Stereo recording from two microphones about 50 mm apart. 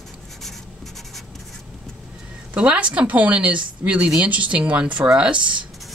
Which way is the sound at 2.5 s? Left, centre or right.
Right.